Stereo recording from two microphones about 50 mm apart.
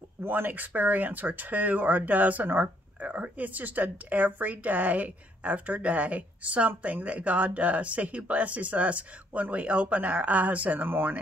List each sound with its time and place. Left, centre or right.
0.2 s speech: right
0.5 s speech: right